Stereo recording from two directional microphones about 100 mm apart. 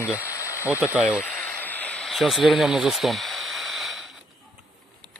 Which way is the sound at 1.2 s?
15° left (ahead or behind).